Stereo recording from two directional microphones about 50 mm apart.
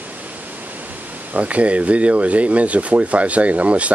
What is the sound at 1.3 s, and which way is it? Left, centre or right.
Speech, right.